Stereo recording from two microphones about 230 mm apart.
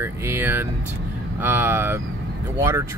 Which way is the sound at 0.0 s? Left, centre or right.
Centre.